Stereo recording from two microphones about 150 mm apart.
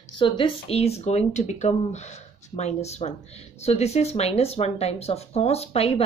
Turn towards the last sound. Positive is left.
turn(degrees=40)  # may be behind; listen again after turning